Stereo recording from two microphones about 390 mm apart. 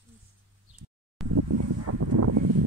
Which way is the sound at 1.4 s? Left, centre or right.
Right.